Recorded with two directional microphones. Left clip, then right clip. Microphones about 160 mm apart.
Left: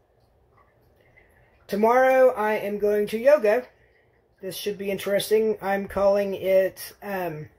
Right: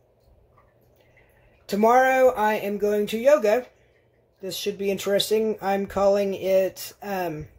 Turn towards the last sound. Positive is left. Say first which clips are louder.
# right 1 dB
turn(degrees=-20)  # may be behind; listen again after turning